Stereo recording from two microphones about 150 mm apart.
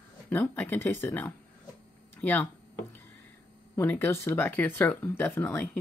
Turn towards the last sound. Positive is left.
turn(degrees=10)  # may be behind; listen again after turning